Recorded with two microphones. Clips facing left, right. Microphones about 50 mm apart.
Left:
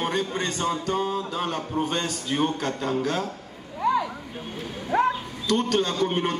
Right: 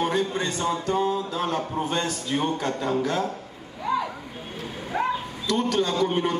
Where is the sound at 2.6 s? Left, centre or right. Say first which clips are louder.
Right 1 dB; centre.